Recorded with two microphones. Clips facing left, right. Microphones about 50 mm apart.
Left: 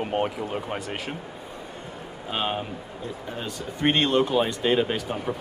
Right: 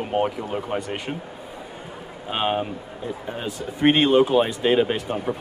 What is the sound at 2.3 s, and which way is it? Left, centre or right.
Speech, centre.